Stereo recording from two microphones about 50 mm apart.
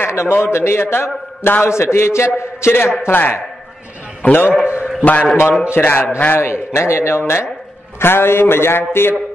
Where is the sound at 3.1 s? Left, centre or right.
Left.